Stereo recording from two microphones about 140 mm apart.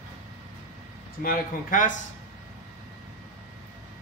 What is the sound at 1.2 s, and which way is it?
Speech, 80° left.